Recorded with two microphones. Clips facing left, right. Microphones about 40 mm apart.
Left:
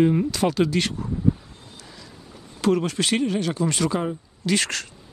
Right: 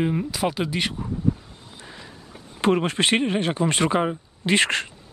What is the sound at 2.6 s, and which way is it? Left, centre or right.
Speech, right.